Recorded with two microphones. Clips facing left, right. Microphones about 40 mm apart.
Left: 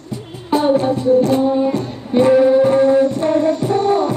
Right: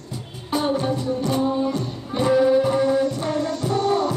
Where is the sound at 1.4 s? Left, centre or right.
Centre.